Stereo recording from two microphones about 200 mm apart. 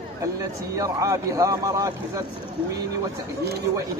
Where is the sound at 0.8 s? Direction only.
15° right (ahead or behind).